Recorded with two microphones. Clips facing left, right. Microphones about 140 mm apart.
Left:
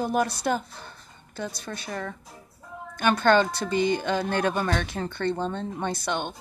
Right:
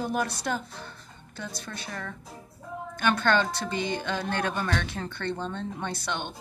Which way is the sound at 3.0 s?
45° left (ahead or behind).